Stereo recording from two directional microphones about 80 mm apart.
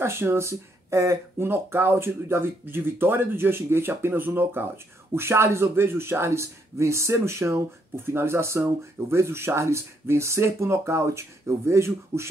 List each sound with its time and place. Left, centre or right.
0.0 s speech: right